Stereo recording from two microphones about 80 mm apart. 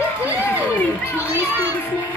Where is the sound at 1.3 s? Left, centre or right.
Right.